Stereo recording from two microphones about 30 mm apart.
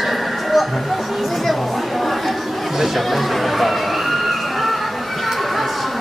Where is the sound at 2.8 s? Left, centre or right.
Centre.